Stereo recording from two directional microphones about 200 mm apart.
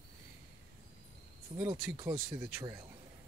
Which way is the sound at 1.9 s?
15° right (ahead or behind).